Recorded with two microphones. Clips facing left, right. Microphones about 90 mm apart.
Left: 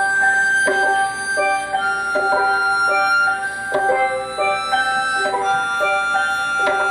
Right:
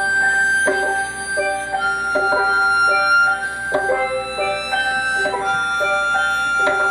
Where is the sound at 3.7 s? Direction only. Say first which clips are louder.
Left 1 dB; 15° right (ahead or behind).